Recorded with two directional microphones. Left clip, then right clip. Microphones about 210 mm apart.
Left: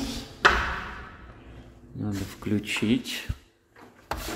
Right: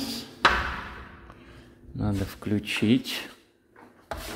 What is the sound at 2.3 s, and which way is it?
Speech, 10° right (ahead or behind).